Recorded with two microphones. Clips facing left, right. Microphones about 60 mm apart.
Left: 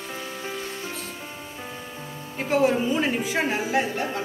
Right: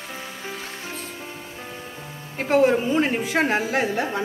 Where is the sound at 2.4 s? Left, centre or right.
Right.